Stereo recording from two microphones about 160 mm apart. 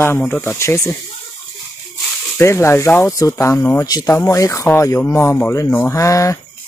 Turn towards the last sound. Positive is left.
turn(degrees=20)  # may be behind; listen again after turning